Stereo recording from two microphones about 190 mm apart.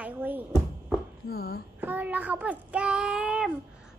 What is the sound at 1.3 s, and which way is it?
Speech, 55° left (ahead or behind).